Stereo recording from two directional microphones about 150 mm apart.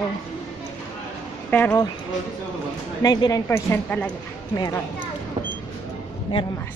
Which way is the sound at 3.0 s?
25° left (ahead or behind).